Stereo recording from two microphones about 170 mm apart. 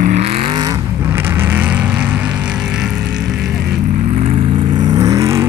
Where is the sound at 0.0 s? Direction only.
40° right (ahead or behind); by 3.4 s 5° right (ahead or behind).